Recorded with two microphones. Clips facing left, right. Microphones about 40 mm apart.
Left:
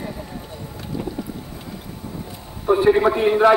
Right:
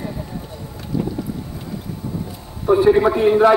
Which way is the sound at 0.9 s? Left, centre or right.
Left.